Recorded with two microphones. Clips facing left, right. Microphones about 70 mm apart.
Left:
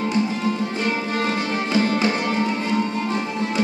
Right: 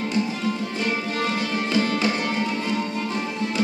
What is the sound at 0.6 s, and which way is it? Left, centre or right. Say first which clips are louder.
Music: left 2 dB; left.